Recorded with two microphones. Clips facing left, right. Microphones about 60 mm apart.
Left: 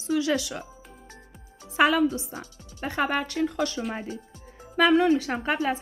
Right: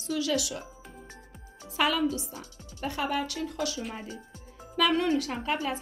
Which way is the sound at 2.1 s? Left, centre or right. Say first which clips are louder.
Left 2 dB; left.